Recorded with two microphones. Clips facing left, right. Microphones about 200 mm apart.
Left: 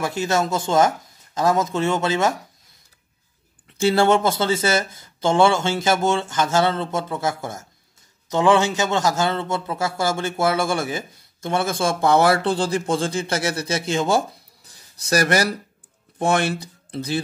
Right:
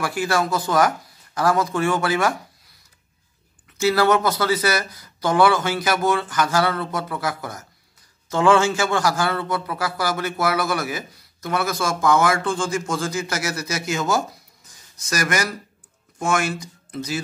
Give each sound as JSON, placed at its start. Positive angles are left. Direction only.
{"t": 0.0, "sound": "a man's voice", "side_deg": 20}
{"t": 3.7, "sound": "a man's voice", "side_deg": 30}
{"t": 14.7, "sound": "a sound", "side_deg": 35}
{"t": 16.2, "sound": "a man's voice", "side_deg": 35}